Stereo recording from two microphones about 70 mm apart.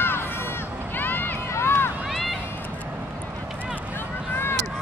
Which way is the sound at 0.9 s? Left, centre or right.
Left.